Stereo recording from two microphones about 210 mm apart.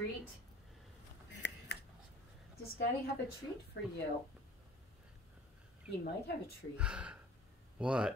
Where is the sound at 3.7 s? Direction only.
55° left (ahead or behind).